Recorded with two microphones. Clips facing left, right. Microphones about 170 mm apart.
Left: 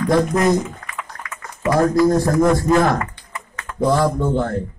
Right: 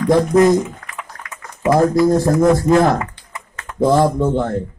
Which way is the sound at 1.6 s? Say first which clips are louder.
Right 2 dB; 25° right (ahead or behind).